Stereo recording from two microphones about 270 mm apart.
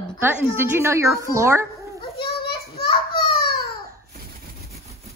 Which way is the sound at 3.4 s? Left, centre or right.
Left.